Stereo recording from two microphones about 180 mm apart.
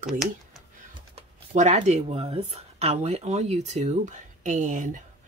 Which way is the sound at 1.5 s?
40° right (ahead or behind).